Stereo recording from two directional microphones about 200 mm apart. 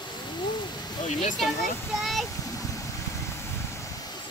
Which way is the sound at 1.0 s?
35° left (ahead or behind).